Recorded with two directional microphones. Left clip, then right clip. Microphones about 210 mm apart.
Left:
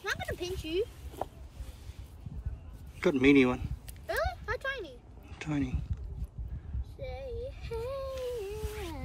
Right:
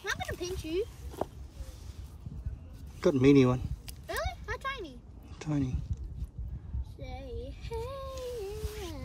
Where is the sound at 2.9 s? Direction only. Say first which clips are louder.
Right 1 dB; 20° right (ahead or behind).